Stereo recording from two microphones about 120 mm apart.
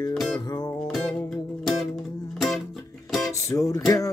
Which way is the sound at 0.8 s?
5° left (ahead or behind).